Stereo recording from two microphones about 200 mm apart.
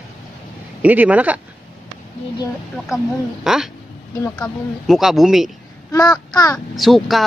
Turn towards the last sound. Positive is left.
turn(degrees=0)  # may be behind; listen again after turning